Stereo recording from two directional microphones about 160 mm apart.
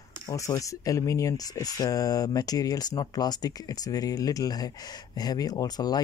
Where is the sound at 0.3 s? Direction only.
20° left (ahead or behind).